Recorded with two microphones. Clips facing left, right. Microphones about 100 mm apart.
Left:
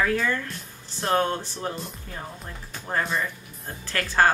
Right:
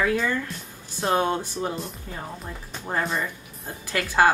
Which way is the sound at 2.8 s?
10° right (ahead or behind).